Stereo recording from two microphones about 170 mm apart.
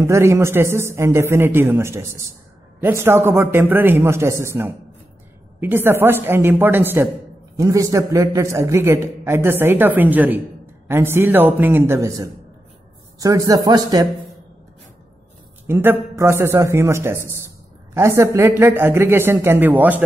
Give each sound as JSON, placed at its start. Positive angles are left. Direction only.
{"t": 0.0, "sound": "a man's voice", "side_deg": -15}
{"t": 15.6, "sound": "a man's voice", "side_deg": -15}